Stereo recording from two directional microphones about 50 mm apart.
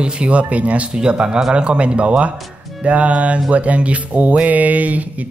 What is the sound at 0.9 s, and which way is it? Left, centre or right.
Speech, centre.